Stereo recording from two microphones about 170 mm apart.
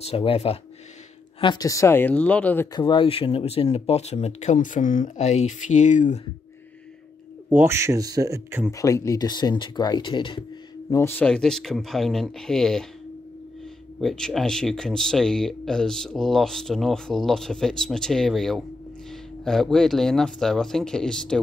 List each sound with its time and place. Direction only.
0.1 s speech: 35° left (ahead or behind); by 2.7 s 10° left (ahead or behind)
2.7 s speech: 30° left (ahead or behind); by 6.2 s 45° left (ahead or behind)
7.4 s speech: 15° right (ahead or behind)
8.7 s speech: 20° left (ahead or behind)
10.9 s speech: 15° left (ahead or behind)
14.0 s speech: 5° left (ahead or behind)